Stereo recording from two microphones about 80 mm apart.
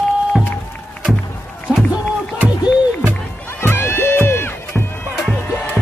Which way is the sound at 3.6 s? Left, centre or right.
Left.